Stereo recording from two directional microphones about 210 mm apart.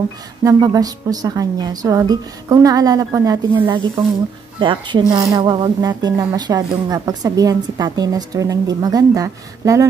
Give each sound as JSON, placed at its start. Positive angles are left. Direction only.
{"t": 0.4, "sound": "a woman's voice", "side_deg": -15}